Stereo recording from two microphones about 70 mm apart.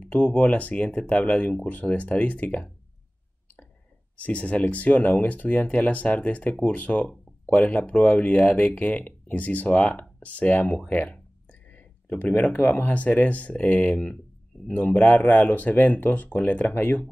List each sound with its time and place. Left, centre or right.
0.0 s speech: centre
4.2 s speech: centre